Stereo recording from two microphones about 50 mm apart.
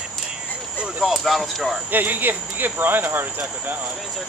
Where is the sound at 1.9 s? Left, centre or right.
Right.